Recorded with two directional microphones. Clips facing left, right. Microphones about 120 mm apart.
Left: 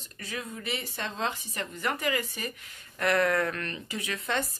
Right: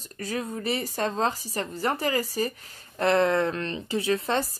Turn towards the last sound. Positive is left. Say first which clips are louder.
# right 6 dB
turn(degrees=-30)  # may be behind; listen again after turning